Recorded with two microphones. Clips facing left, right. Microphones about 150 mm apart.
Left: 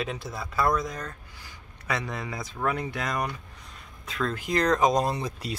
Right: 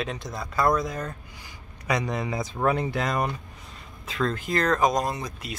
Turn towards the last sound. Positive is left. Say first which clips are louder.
# left 2 dB
turn(degrees=30)  # may be behind; listen again after turning